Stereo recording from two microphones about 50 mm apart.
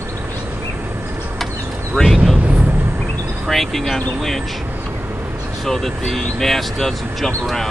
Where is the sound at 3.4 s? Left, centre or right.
Centre.